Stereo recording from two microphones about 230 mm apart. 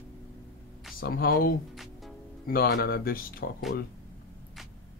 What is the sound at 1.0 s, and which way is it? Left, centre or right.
Speech, left.